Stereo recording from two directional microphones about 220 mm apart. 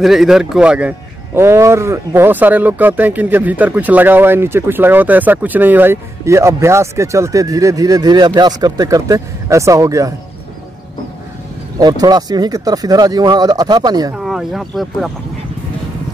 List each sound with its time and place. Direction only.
0.0 s a man's voice: centre (ahead or behind)
11.8 s a man's voice: 20° right (ahead or behind)
14.1 s speech: centre (ahead or behind)